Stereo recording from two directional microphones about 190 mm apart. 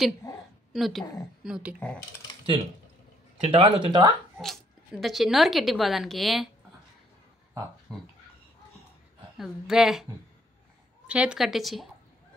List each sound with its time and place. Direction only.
0.2 s a sound: 20° left (ahead or behind)
0.7 s speech: centre (ahead or behind)
3.3 s speech: 30° right (ahead or behind)
4.4 s speech: centre (ahead or behind)
9.4 s speech: centre (ahead or behind)
11.1 s speech: 5° right (ahead or behind)